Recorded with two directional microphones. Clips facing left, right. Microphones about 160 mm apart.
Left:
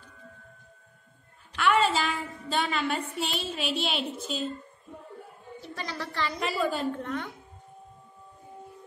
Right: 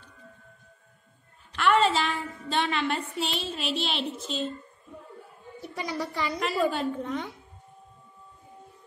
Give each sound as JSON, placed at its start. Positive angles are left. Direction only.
{"t": 1.6, "sound": "a woman's voice", "side_deg": 5}
{"t": 5.6, "sound": "a woman's voice", "side_deg": -15}
{"t": 6.4, "sound": "a woman's voice", "side_deg": 0}
{"t": 7.0, "sound": "a woman's voice", "side_deg": -10}